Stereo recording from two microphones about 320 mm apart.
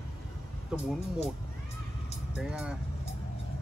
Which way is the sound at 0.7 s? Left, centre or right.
Centre.